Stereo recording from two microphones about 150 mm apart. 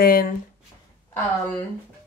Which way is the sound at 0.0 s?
85° left.